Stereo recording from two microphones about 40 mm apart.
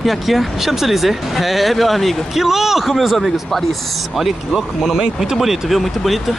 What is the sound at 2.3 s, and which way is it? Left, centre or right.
Speech, centre.